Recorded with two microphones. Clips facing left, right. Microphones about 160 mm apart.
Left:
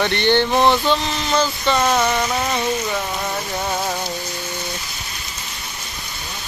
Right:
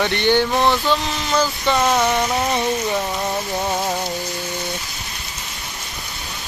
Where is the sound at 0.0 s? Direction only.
10° right (ahead or behind).